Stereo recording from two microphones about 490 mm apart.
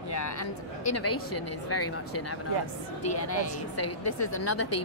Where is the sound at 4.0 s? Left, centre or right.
Left.